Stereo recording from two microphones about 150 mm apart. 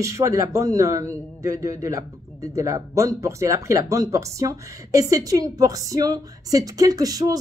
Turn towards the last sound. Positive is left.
turn(degrees=-25)  # may be behind; listen again after turning